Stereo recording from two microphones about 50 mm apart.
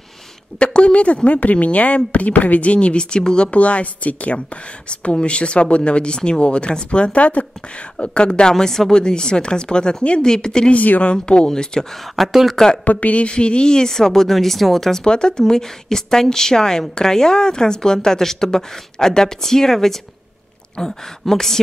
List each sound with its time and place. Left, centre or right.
0.6 s speech: left
3.5 s a woman's voice: left
10.7 s speech: left; by 11.8 s centre
12.2 s speech: centre
12.8 s a woman's voice: left; by 15.0 s centre
15.0 s a woman's voice: centre